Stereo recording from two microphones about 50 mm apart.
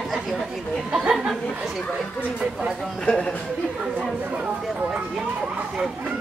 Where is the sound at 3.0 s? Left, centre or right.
Centre.